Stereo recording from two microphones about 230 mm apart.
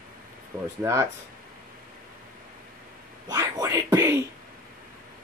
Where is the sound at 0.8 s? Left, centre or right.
Centre.